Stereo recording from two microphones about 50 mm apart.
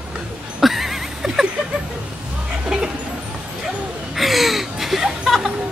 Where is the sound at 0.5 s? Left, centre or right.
Centre.